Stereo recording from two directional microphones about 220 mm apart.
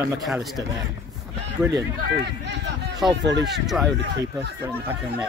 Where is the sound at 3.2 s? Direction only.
55° right (ahead or behind).